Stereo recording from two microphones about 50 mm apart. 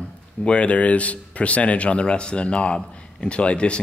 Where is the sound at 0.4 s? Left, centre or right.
Left.